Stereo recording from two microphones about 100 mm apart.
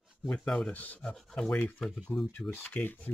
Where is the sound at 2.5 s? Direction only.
15° left (ahead or behind).